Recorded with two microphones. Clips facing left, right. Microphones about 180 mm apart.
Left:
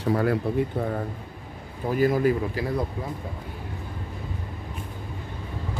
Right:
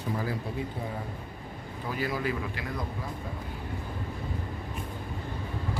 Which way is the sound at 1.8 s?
45° left (ahead or behind).